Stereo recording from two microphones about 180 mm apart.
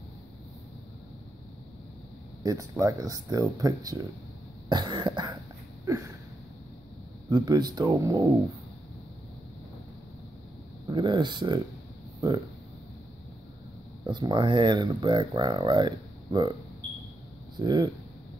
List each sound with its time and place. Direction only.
2.4 s speech: 20° right (ahead or behind)
4.6 s cough: 25° right (ahead or behind)
5.9 s a sound: 15° right (ahead or behind)
7.2 s speech: 20° right (ahead or behind)
10.9 s speech: 25° right (ahead or behind)
14.0 s speech: 25° right (ahead or behind)
17.6 s speech: 25° right (ahead or behind)